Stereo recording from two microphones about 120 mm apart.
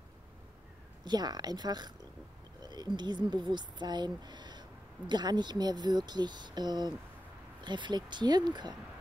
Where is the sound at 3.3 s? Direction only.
40° right (ahead or behind).